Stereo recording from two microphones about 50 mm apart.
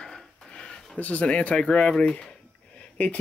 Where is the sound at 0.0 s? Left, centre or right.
Centre.